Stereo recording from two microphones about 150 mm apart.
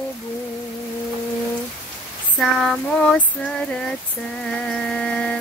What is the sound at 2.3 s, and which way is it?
Female singing, 5° left (ahead or behind).